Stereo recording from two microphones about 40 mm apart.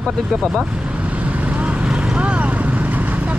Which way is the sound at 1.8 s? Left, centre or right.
Right.